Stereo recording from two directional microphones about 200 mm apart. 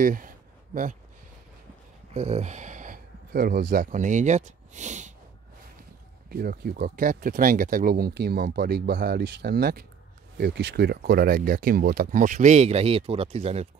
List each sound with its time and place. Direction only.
0.0 s speech: 45° right (ahead or behind)
2.1 s speech: 35° right (ahead or behind)
6.2 s speech: 50° right (ahead or behind); by 13.7 s 30° right (ahead or behind)